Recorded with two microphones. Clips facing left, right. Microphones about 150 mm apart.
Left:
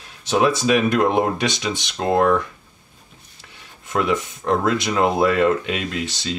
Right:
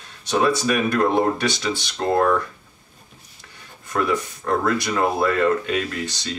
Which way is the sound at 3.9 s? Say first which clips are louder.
Left 1 dB; 20° left (ahead or behind).